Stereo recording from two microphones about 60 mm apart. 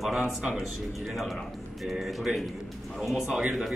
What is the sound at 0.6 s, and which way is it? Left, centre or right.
Speech, centre.